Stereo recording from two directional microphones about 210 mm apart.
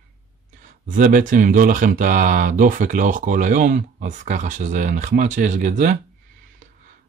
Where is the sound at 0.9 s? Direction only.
40° right (ahead or behind).